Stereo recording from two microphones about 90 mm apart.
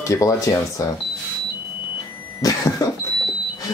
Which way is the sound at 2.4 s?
45° left (ahead or behind).